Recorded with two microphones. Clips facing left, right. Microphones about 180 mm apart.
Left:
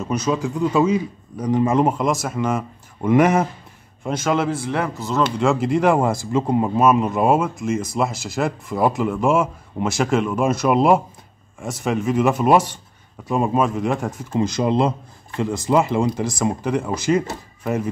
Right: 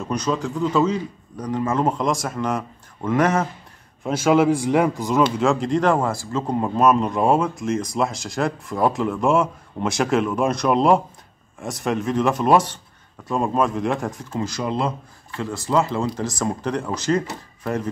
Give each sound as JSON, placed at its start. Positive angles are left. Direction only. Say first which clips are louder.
{"t": 0.0, "sound": "a man's voice", "louder": "left 2 dB", "side_deg": 5}
{"t": 2.0, "sound": "a man's voice", "louder": "left 2 dB", "side_deg": 5}
{"t": 4.0, "sound": "speech", "louder": "right 4 dB", "side_deg": -10}
{"t": 5.4, "sound": "speech", "louder": "left 1 dB", "side_deg": 5}
{"t": 14.3, "sound": "a man's voice", "louder": "left 7 dB", "side_deg": 20}